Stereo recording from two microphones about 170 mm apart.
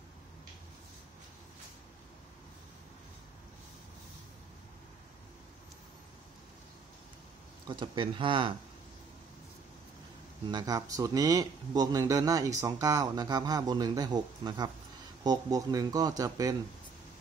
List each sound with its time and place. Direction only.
7.6 s speech: 25° right (ahead or behind)
10.5 s speech: 20° right (ahead or behind)